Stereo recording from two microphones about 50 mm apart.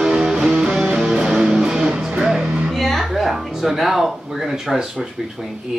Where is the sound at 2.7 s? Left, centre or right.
Centre.